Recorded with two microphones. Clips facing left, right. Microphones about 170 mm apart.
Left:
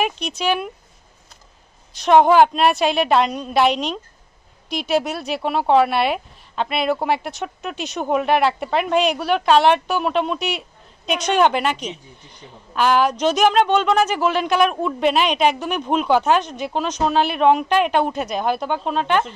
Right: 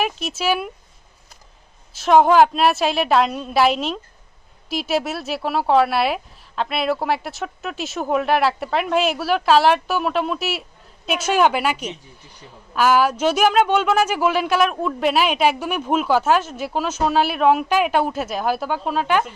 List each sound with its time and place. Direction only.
0.0 s a woman's voice: 5° right (ahead or behind)
2.0 s a woman's voice: centre (ahead or behind)